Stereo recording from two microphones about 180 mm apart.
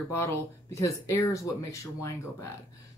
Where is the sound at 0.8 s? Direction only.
15° left (ahead or behind).